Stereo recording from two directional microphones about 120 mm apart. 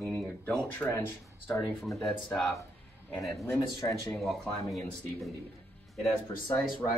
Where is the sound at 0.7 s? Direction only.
15° left (ahead or behind).